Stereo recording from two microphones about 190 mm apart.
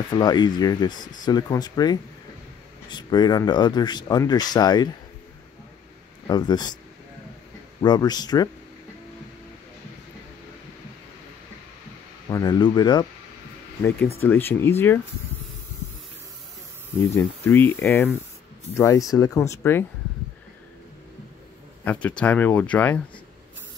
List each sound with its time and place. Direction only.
0.1 s speech: 25° left (ahead or behind)
6.2 s speech: 20° left (ahead or behind)
7.8 s speech: 20° left (ahead or behind)
12.3 s speech: 20° left (ahead or behind)
14.2 s speech: 10° left (ahead or behind)
17.5 s speech: 10° left (ahead or behind)
21.8 s speech: 5° left (ahead or behind)